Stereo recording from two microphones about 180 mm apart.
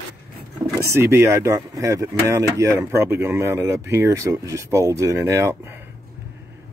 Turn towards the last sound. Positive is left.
turn(degrees=-15)  # may be behind; listen again after turning